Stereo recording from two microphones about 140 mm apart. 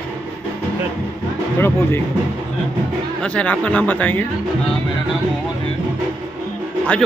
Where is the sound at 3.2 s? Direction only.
10° left (ahead or behind).